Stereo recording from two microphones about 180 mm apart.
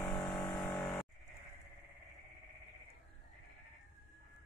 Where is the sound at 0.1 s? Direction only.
25° left (ahead or behind).